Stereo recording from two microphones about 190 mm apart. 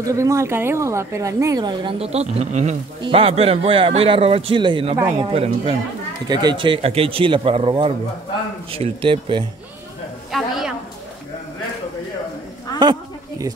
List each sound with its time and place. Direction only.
0.0 s speech: 15° right (ahead or behind)
4.9 s speech: 15° right (ahead or behind)
5.3 s speech: 30° right (ahead or behind)
10.3 s a woman's voice: centre (ahead or behind)
12.7 s a sound: 20° left (ahead or behind)